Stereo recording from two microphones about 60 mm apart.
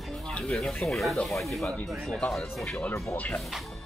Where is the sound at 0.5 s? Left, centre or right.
Centre.